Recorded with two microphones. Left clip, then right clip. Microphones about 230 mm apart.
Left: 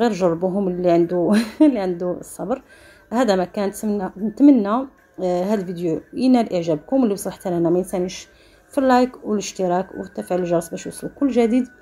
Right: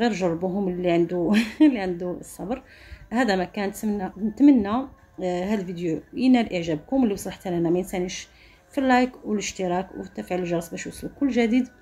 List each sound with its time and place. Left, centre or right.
0.0 s a woman's voice: centre